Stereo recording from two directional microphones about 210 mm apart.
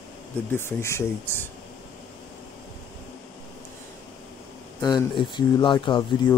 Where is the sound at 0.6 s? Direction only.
10° left (ahead or behind).